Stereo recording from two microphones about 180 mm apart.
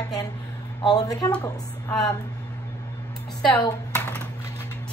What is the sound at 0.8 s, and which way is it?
Speech, 20° left (ahead or behind).